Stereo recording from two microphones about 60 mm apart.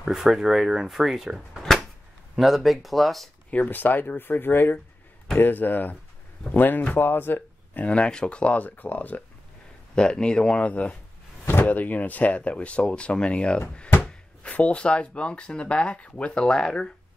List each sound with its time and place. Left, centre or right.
0.0 s speech: centre
3.4 s speech: left
9.9 s speech: centre